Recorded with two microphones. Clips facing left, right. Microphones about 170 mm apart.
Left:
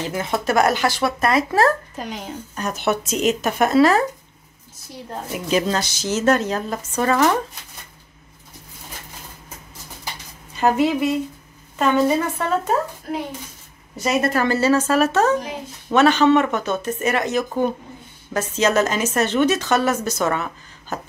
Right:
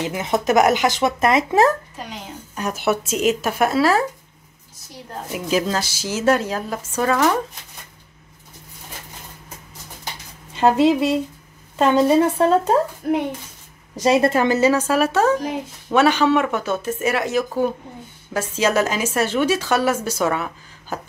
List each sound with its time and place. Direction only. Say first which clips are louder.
0.0 s a woman's voice: right 2 dB; 20° right (ahead or behind)
2.5 s a woman's voice: right 1 dB; 10° right (ahead or behind)
5.3 s a woman's voice: even; 5° right (ahead or behind)
10.5 s a woman's voice: right 3 dB; 25° right (ahead or behind)
14.0 s a woman's voice: right 3 dB; 30° right (ahead or behind); by 21.1 s 10° right (ahead or behind)